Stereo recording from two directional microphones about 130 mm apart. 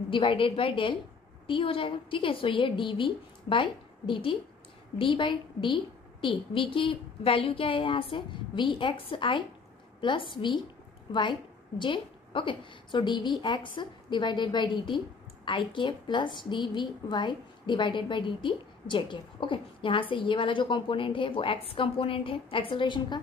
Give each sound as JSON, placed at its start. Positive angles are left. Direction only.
{"t": 0.1, "sound": "a woman's voice", "side_deg": 40}